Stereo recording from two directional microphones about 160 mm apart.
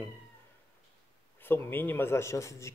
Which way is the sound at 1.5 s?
15° left (ahead or behind).